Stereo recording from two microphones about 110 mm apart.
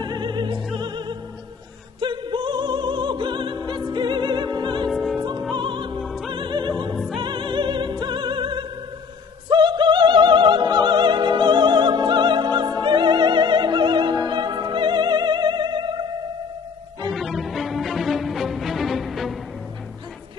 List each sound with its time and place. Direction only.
0.0 s opera: 40° right (ahead or behind)
0.7 s music: 40° right (ahead or behind)
2.0 s opera: 45° right (ahead or behind)
4.8 s music: centre (ahead or behind)
5.6 s music: 45° right (ahead or behind)
5.9 s music: centre (ahead or behind)
6.3 s music: 45° right (ahead or behind)
7.2 s opera: 45° right (ahead or behind)
17.1 s music: centre (ahead or behind)